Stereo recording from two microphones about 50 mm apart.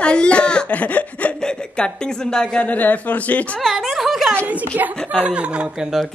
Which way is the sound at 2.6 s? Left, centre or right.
Left.